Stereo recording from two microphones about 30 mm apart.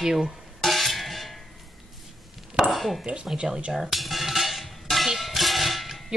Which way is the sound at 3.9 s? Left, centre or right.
Centre.